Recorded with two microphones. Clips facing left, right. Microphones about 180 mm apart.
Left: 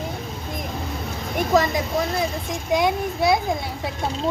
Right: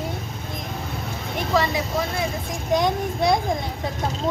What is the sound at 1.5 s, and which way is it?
Speech, 45° left (ahead or behind).